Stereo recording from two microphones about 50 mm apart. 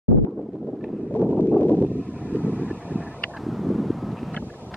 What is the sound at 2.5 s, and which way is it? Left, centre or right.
Vehicle, right.